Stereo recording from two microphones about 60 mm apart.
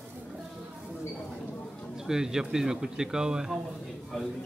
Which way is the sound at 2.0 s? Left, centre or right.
Centre.